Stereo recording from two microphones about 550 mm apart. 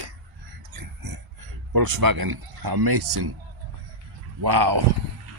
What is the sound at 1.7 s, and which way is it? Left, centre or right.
Speech, right.